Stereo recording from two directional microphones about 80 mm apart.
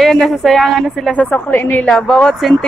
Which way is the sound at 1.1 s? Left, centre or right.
Left.